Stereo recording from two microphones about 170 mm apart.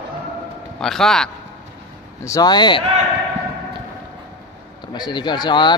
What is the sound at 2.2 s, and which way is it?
Speech, 20° left (ahead or behind).